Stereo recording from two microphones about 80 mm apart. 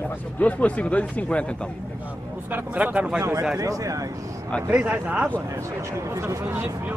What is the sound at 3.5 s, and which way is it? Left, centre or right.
Speech, right.